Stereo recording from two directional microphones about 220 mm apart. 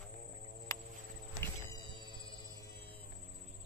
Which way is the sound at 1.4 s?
20° left (ahead or behind).